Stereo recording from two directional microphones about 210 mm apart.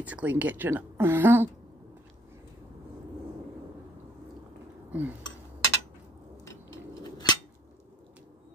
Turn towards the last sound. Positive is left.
turn(degrees=15)  # may be behind; listen again after turning